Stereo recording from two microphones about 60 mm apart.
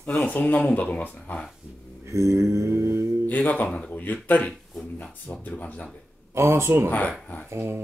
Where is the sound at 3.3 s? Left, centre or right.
Left.